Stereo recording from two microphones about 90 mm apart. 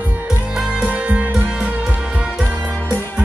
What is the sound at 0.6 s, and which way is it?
Music, 10° right (ahead or behind).